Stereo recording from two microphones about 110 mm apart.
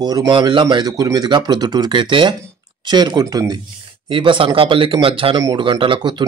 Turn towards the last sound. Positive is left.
turn(degrees=-45)  # may be behind; listen again after turning